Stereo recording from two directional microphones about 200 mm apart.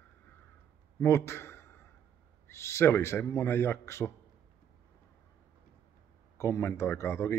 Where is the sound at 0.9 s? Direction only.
15° left (ahead or behind).